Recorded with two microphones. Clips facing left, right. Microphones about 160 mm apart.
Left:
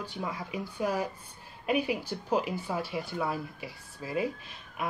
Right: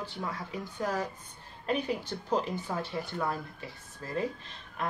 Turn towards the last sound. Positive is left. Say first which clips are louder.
# even
turn(degrees=10)  # may be behind; listen again after turning